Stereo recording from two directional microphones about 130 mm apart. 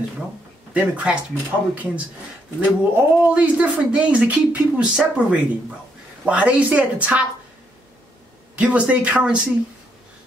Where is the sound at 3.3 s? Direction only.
10° right (ahead or behind).